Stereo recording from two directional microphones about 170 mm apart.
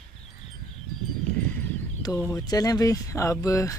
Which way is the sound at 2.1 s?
10° left (ahead or behind).